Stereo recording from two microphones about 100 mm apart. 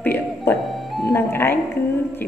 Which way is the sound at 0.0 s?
20° left (ahead or behind).